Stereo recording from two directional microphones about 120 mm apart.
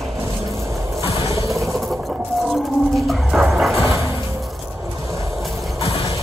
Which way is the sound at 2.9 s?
Centre (ahead or behind).